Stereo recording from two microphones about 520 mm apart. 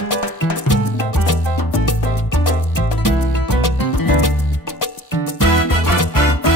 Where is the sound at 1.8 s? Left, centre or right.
Left.